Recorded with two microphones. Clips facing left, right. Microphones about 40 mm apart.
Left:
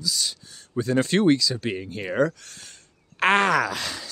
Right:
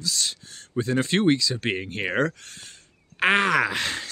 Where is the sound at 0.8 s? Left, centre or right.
Right.